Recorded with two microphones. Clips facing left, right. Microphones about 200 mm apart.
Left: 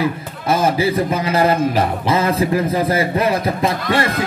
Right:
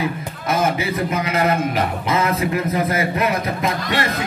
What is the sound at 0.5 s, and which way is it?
A man's voice, 30° left (ahead or behind).